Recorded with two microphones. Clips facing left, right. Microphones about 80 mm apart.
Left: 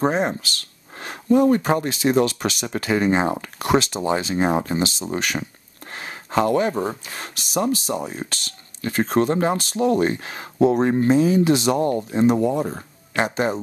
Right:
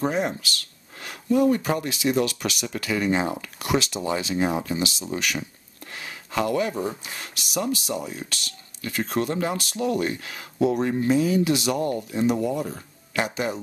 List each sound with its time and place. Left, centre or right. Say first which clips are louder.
0.0 s speech: left 4 dB; left